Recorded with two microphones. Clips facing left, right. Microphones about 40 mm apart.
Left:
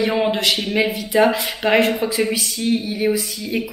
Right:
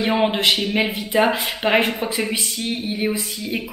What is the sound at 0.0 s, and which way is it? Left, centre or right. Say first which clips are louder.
Speech: even; right.